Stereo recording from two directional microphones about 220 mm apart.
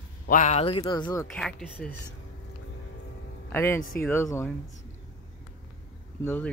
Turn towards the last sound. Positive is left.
turn(degrees=10)  # may be behind; listen again after turning